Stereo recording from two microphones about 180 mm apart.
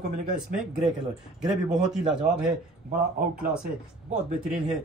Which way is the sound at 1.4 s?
5° right (ahead or behind).